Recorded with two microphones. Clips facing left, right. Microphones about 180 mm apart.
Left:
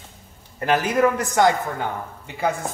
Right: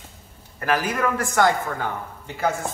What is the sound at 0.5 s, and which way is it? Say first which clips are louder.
A man's voice: left 3 dB; 20° left (ahead or behind).